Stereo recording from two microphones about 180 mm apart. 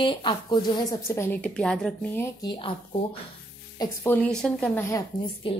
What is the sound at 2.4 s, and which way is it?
Speech, 25° left (ahead or behind).